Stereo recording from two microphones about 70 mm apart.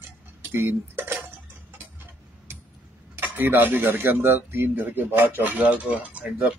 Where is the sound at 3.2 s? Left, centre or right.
Right.